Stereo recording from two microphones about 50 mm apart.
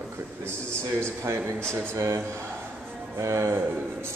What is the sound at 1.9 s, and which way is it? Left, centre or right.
Music, right.